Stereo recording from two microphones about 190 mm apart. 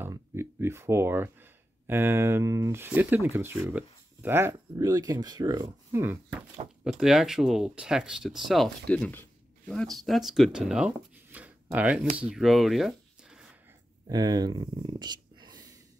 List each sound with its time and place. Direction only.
0.0 s speech: 15° right (ahead or behind)
6.8 s speech: centre (ahead or behind)
11.3 s a sound: 10° right (ahead or behind)
12.2 s speech: 5° right (ahead or behind)
14.0 s speech: 20° right (ahead or behind)